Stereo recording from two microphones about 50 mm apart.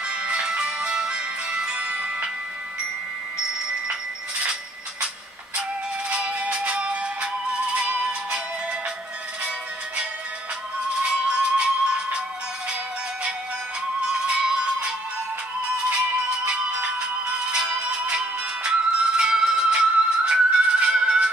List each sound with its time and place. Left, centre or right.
0.0 s music: right
3.9 s a sound: centre
6.0 s music: right
11.0 s music: centre
14.0 s music: centre